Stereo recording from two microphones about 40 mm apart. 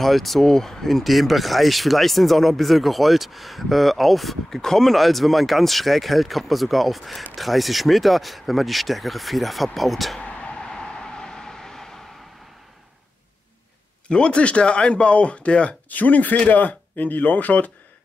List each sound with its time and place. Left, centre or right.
0.0 s speech: centre
10.2 s a sound: left
10.6 s vehicle: centre
14.0 s speech: left
15.9 s speech: left